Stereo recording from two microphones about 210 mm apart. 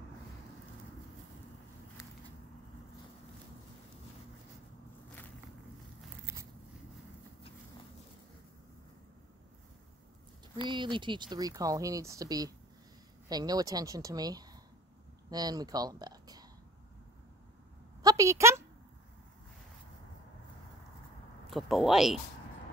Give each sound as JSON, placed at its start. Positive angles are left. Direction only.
{"t": 6.3, "sound": "biting", "side_deg": -10}
{"t": 10.7, "sound": "speech", "side_deg": -20}
{"t": 18.0, "sound": "a woman's voice", "side_deg": -15}
{"t": 21.5, "sound": "speech", "side_deg": 0}